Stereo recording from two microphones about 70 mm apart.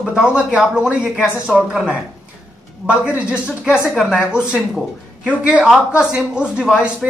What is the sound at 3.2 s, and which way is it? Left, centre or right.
Speech, centre.